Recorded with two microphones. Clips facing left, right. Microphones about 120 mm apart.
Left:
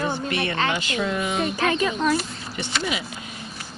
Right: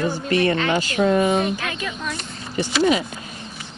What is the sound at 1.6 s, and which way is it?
Speech, 40° left (ahead or behind).